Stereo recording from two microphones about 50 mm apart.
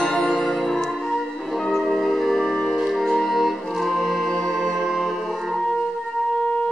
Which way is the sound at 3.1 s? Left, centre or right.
Centre.